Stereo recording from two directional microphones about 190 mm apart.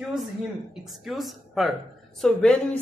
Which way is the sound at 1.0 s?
Centre (ahead or behind).